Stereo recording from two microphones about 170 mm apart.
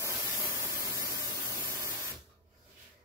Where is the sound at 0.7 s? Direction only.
20° right (ahead or behind).